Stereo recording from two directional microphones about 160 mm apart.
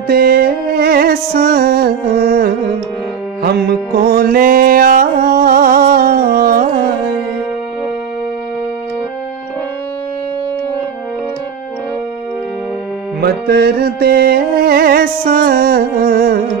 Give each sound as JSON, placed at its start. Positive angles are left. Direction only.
{"t": 0.1, "sound": "music", "side_deg": -75}
{"t": 3.4, "sound": "music", "side_deg": -85}
{"t": 13.2, "sound": "music", "side_deg": -80}